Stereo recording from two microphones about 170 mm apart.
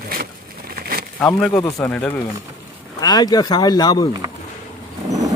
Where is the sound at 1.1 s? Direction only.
5° left (ahead or behind).